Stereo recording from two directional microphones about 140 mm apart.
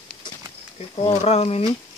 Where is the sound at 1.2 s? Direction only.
45° left (ahead or behind).